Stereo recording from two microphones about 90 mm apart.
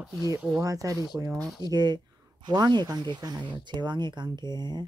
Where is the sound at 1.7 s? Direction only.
50° right (ahead or behind).